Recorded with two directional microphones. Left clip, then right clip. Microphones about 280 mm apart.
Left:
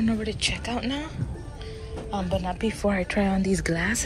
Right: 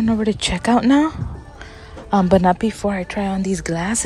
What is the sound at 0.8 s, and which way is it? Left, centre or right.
Speech, right.